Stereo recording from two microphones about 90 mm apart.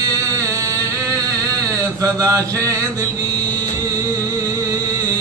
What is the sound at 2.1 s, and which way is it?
Chant, 40° right (ahead or behind).